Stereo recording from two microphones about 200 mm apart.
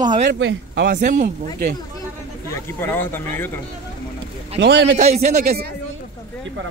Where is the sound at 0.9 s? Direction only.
40° right (ahead or behind).